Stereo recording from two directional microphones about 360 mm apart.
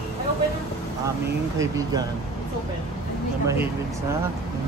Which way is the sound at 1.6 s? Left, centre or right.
Centre.